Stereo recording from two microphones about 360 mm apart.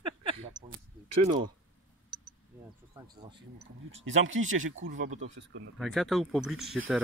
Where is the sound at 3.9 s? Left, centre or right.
Right.